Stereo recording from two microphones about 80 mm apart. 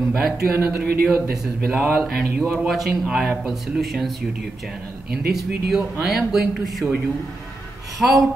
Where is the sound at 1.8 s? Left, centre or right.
Centre.